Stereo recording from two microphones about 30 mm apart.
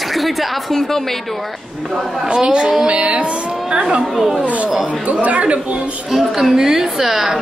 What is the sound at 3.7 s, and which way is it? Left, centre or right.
Music, right.